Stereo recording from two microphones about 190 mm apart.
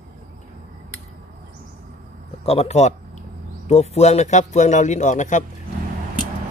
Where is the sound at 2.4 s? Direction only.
35° left (ahead or behind).